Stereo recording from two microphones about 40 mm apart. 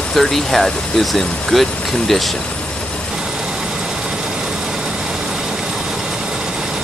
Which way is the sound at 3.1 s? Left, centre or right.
Centre.